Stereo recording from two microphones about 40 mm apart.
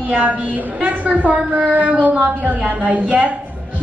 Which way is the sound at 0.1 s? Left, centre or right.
Right.